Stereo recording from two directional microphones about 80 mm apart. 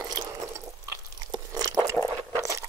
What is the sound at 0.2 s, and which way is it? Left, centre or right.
Drip, right.